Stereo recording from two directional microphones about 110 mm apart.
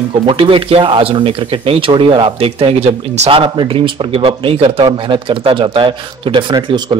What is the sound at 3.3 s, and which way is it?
A man's voice, 50° right (ahead or behind).